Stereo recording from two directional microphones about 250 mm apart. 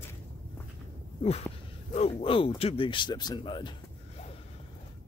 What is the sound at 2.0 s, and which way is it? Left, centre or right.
Speech, left.